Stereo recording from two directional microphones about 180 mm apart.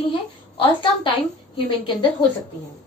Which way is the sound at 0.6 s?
30° left (ahead or behind).